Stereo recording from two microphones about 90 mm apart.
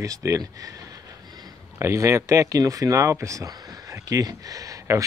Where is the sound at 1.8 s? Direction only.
35° right (ahead or behind).